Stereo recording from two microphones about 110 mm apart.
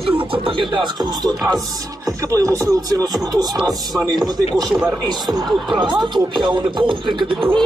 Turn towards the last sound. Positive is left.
turn(degrees=-45)  # may be behind; listen again after turning